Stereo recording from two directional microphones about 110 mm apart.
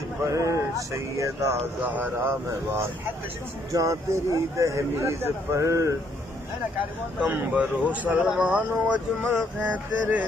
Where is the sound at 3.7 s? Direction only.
30° right (ahead or behind).